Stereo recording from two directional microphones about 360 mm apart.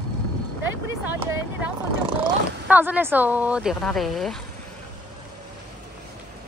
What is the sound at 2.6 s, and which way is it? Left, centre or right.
Speech, centre.